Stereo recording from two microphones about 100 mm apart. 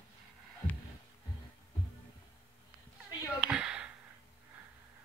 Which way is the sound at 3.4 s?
10° right (ahead or behind).